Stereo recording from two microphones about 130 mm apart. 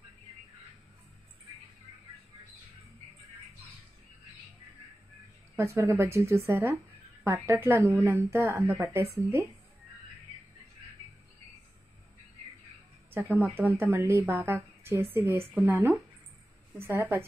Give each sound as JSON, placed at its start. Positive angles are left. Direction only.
{"t": 5.6, "sound": "speech", "side_deg": -20}
{"t": 13.1, "sound": "speech", "side_deg": -15}